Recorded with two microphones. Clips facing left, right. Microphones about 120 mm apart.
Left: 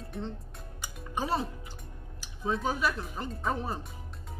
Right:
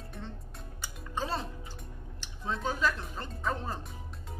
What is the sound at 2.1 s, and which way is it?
Speech, 5° left (ahead or behind).